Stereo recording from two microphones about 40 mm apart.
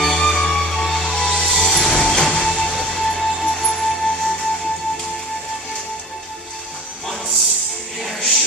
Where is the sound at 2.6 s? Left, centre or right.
Centre.